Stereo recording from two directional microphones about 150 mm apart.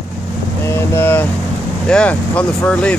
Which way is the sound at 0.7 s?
15° left (ahead or behind).